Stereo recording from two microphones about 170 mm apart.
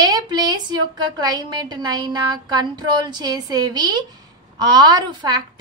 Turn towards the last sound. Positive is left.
turn(degrees=-25)  # may be behind; listen again after turning